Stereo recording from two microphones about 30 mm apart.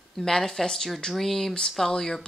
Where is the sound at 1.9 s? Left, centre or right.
Left.